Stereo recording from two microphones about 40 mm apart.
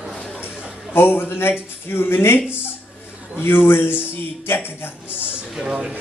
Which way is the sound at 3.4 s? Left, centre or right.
Left.